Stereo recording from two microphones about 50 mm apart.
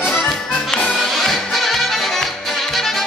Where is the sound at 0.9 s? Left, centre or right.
Centre.